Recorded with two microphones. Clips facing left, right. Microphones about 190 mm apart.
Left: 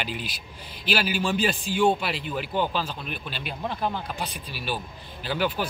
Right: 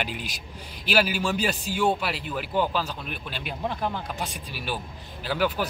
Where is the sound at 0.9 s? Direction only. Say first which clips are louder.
Right 1 dB; 10° right (ahead or behind).